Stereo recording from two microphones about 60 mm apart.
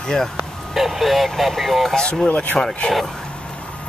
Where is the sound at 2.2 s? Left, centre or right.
Left.